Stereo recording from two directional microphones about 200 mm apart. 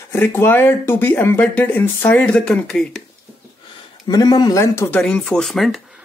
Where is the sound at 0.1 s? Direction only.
15° left (ahead or behind).